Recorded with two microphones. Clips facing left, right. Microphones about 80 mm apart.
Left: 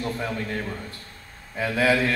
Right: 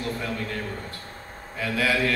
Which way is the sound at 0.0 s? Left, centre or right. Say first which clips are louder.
Left 1 dB; left.